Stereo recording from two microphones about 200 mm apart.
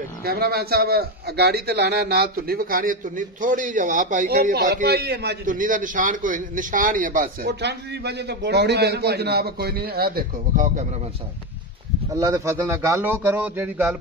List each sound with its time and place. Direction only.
0.2 s a man's voice: 50° right (ahead or behind)
12.2 s speech: 15° right (ahead or behind)